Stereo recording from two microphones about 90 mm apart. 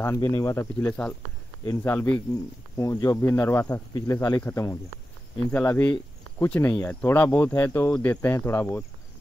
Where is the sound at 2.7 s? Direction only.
40° left (ahead or behind).